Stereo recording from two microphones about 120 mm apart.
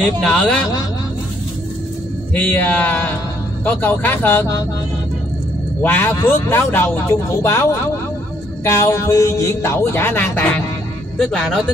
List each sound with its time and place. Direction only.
0.2 s speech: 5° left (ahead or behind)
2.3 s speech: 15° left (ahead or behind)
5.8 s a man's voice: 15° left (ahead or behind)
11.1 s speech: 5° left (ahead or behind)